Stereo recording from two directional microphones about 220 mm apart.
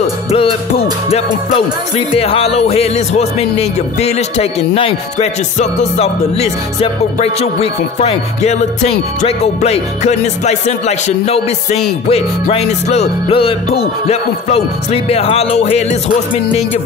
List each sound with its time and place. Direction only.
0.0 s music: 25° left (ahead or behind)
1.5 s speech: 25° left (ahead or behind)